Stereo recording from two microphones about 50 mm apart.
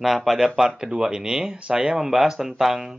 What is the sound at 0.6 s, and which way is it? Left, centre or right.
Speech, centre.